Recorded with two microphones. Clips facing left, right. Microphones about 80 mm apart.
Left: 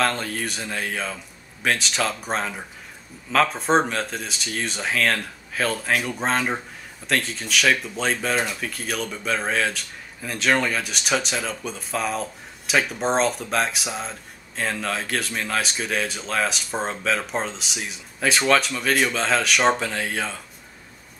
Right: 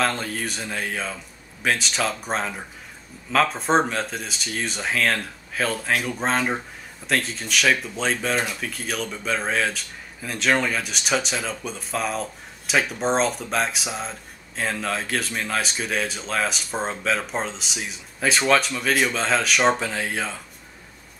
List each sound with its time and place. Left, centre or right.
0.0 s speech: centre